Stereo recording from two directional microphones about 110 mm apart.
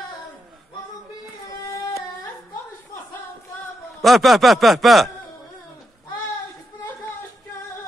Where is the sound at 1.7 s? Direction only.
30° left (ahead or behind).